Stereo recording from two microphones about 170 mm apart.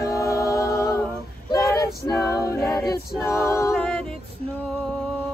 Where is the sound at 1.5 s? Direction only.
20° left (ahead or behind).